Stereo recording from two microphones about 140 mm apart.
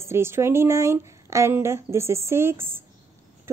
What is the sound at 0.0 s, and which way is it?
A woman's voice, 20° right (ahead or behind).